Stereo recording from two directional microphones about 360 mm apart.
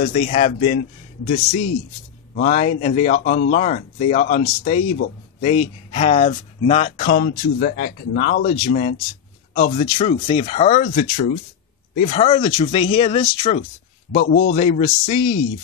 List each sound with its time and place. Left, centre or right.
0.0 s speech: centre
2.3 s speech: centre
14.1 s speech: left